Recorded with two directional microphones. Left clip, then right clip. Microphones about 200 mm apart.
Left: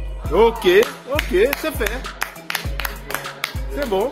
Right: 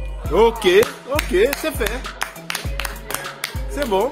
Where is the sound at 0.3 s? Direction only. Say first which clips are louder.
Even; 15° right (ahead or behind).